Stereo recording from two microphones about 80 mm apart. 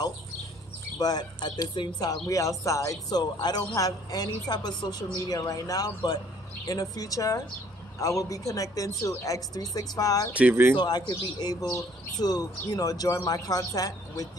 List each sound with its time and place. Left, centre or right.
0.9 s speech: left
2.2 s speech: left
5.3 s speech: left
10.5 s speech: right
10.8 s speech: left